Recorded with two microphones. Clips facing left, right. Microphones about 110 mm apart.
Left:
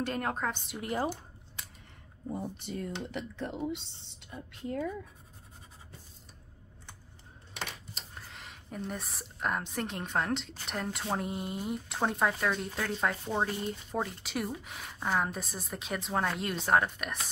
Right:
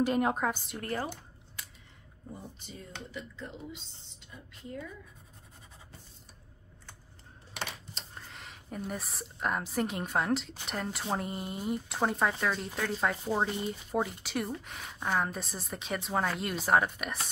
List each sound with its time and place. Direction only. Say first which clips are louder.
0.0 s a woman's voice: right 5 dB; 15° right (ahead or behind)
0.7 s speech: left 1 dB; 10° left (ahead or behind)
2.3 s speech: left 9 dB; 60° left (ahead or behind)
7.9 s speech: even; centre (ahead or behind)